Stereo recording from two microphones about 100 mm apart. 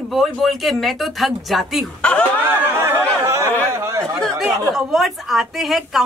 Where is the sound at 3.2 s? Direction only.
30° right (ahead or behind).